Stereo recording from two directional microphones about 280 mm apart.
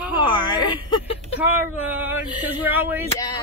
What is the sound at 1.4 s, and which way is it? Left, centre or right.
Speech, centre.